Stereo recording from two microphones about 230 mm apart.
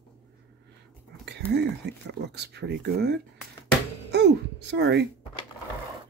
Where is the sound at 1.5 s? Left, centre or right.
Right.